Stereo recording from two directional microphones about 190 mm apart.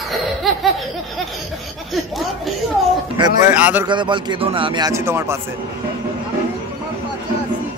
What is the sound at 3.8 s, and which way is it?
A man's voice, 25° right (ahead or behind).